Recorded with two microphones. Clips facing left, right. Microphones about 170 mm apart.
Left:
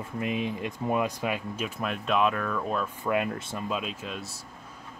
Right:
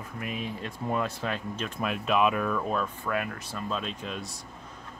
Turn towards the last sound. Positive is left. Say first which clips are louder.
# even
turn(degrees=5)  # may be behind; listen again after turning